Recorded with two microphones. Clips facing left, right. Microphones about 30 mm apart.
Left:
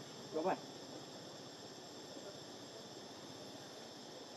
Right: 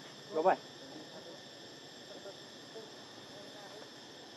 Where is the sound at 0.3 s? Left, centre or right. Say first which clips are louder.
Right 8 dB; right.